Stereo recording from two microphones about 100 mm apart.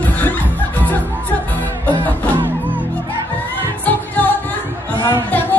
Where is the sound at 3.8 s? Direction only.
15° left (ahead or behind).